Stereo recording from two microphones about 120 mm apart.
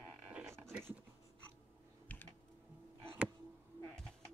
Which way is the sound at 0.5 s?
20° right (ahead or behind).